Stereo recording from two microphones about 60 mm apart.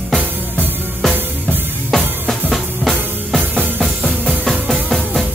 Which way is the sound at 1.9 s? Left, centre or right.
Centre.